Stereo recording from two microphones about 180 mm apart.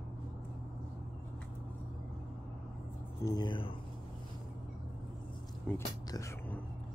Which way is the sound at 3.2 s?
25° left (ahead or behind).